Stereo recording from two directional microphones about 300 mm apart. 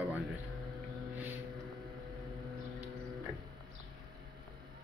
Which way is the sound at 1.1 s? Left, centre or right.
Centre.